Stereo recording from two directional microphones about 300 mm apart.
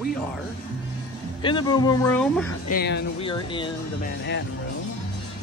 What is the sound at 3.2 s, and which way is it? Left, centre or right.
Speech, centre.